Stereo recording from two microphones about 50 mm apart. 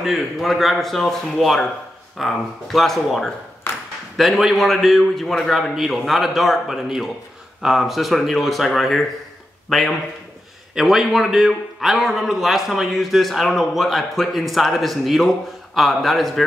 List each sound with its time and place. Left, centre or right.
0.0 s a man's voice: centre
3.7 s ping: left
4.2 s a man's voice: centre
10.7 s a man's voice: centre